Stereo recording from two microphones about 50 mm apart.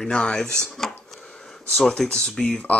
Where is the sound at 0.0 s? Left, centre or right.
Centre.